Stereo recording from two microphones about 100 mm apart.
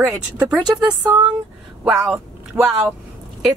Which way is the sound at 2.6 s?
20° right (ahead or behind).